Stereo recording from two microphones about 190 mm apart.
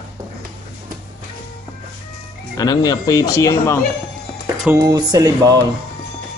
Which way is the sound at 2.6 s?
20° left (ahead or behind).